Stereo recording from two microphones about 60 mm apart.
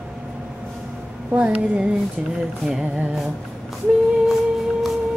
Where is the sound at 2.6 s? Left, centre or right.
Centre.